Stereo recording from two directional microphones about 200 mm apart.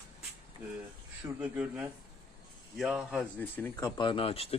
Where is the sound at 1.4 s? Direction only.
5° right (ahead or behind).